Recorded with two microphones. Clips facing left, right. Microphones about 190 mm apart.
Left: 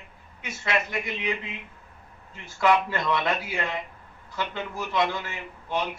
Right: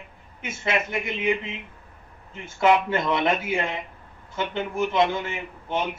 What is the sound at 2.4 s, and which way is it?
A man's voice, 25° right (ahead or behind).